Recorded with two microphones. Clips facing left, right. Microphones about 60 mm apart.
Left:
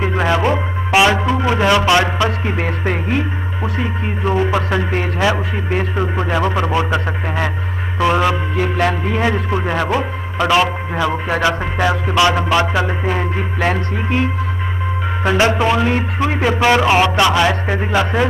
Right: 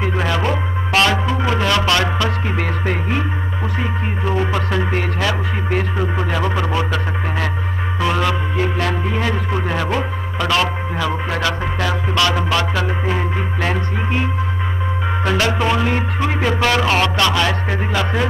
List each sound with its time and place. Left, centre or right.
0.0 s a man's voice: centre
1.8 s music: left
4.3 s a man's voice: centre
4.9 s music: left
6.3 s a man's voice: centre
8.0 s a man's voice: centre
11.2 s music: centre
15.2 s music: left
15.5 s a man's voice: centre